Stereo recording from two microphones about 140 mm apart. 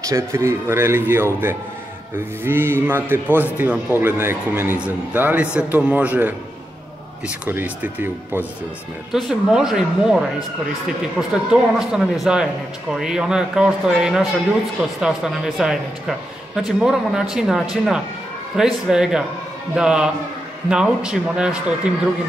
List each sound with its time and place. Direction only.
0.0 s a man's voice: 20° right (ahead or behind); by 21.5 s 5° right (ahead or behind)